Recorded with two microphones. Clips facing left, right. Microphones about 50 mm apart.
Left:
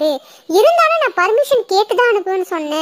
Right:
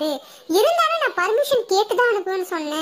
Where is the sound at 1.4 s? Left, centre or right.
Left.